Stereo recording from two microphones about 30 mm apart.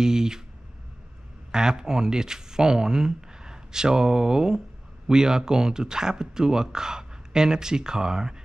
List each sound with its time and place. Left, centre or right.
0.0 s speech: right
1.5 s speech: right